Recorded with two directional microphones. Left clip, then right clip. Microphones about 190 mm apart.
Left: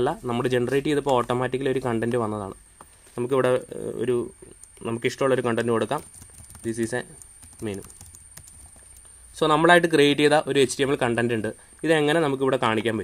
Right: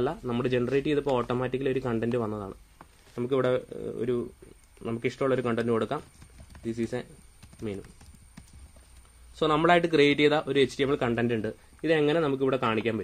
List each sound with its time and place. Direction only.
0.0 s speech: 30° left (ahead or behind)
9.3 s speech: 30° left (ahead or behind)